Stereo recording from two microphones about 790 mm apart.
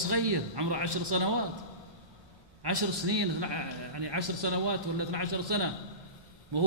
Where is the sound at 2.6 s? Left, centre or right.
Right.